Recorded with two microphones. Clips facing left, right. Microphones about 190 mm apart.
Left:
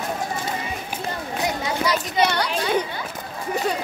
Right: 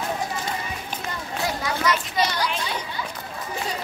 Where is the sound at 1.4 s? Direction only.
25° left (ahead or behind).